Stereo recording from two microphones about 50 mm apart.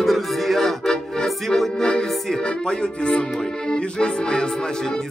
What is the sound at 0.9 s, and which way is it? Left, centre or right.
Accordion, centre.